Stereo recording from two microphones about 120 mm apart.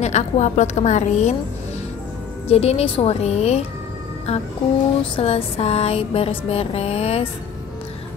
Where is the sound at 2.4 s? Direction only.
60° left (ahead or behind).